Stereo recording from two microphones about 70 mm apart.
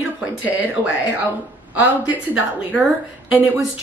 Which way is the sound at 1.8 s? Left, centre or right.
Centre.